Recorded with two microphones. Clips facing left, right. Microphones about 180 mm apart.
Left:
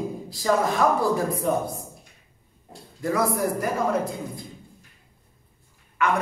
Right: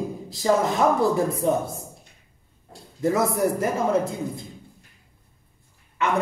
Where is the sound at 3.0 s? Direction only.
25° right (ahead or behind).